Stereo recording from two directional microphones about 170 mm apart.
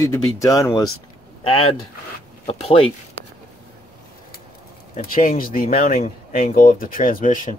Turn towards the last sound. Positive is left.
turn(degrees=50)  # may be behind; listen again after turning